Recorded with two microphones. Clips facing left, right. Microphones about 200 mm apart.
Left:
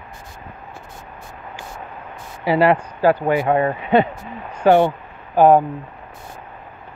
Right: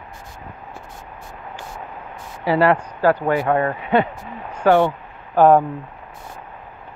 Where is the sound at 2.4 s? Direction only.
15° left (ahead or behind).